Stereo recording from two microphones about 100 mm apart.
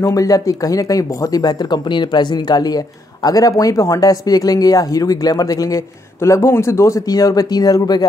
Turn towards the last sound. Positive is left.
turn(degrees=40)  # may be behind; listen again after turning